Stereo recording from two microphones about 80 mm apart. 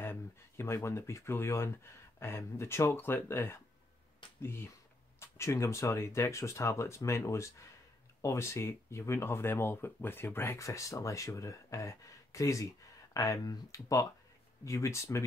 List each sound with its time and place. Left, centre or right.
0.0 s speech: left